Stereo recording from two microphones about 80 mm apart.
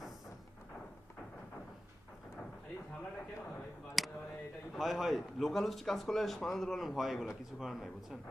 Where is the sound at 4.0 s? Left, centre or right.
Centre.